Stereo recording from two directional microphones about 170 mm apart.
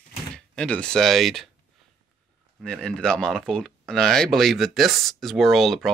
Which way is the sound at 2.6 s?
5° left (ahead or behind).